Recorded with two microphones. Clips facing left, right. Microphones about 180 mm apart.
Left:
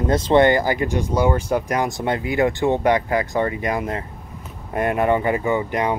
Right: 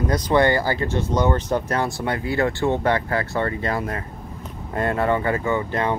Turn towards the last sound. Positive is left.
turn(degrees=15)  # may be behind; listen again after turning